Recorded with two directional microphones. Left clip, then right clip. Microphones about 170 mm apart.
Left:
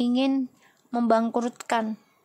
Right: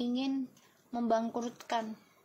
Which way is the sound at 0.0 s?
45° left (ahead or behind).